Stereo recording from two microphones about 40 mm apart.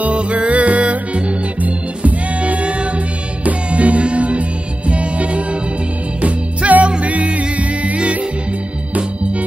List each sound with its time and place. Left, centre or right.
0.0 s music: right